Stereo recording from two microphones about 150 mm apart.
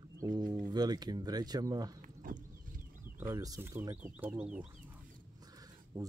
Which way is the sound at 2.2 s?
65° right (ahead or behind).